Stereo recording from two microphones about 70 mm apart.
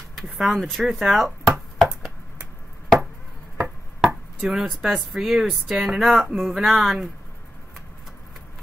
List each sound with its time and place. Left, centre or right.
0.1 s chop: centre
3.6 s speech: centre